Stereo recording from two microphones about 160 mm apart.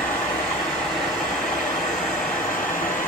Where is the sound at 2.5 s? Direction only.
10° left (ahead or behind).